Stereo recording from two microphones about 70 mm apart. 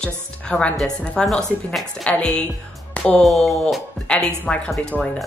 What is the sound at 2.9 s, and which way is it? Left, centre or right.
Music, centre.